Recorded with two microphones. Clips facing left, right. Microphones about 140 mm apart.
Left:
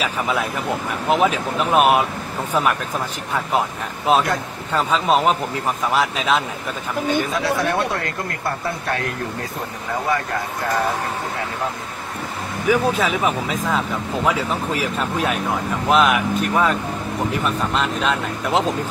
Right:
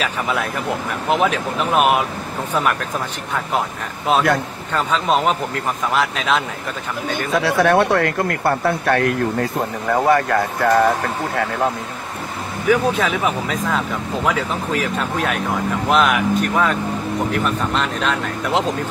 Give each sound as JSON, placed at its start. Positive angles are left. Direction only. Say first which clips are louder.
{"t": 0.0, "sound": "speech", "louder": "even", "side_deg": 0}
{"t": 4.7, "sound": "speech", "louder": "even", "side_deg": 0}
{"t": 7.3, "sound": "speech", "louder": "right 5 dB", "side_deg": -70}
{"t": 12.6, "sound": "speech", "louder": "right 1 dB", "side_deg": 0}